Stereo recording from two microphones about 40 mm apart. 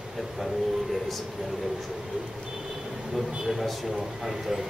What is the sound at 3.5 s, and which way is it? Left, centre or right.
Speech, centre.